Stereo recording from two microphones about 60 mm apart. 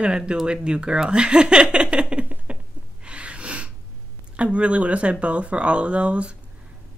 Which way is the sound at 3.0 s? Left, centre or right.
Centre.